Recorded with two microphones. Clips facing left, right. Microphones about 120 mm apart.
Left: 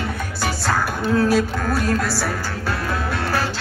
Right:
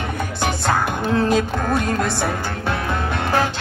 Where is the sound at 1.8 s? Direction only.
20° right (ahead or behind).